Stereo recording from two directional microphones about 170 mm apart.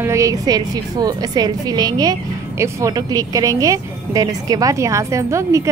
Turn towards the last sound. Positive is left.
turn(degrees=-15)  # may be behind; listen again after turning